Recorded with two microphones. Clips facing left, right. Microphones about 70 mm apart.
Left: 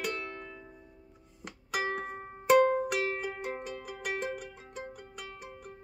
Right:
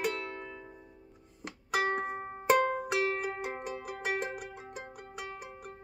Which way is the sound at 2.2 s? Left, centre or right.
Centre.